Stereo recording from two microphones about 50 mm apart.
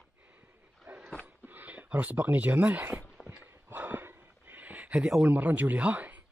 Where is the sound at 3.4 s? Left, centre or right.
Right.